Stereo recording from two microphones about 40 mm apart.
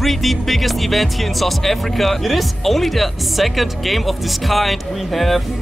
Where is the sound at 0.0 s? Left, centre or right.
Centre.